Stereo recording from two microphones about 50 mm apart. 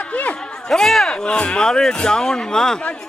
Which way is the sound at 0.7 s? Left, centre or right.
Centre.